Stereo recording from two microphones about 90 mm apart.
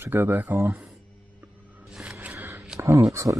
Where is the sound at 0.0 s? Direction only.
25° right (ahead or behind).